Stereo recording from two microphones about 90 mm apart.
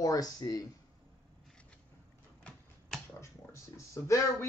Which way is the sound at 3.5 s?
35° left (ahead or behind).